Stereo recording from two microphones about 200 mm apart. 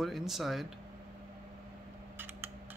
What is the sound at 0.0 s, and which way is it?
Speech, centre (ahead or behind).